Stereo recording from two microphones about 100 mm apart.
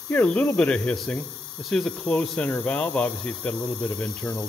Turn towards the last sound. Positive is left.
turn(degrees=10)  # may be behind; listen again after turning